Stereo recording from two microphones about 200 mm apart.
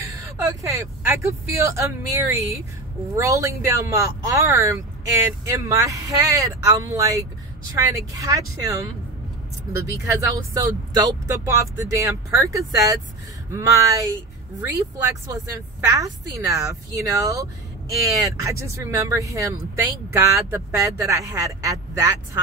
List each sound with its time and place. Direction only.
0.0 s speech: 15° right (ahead or behind)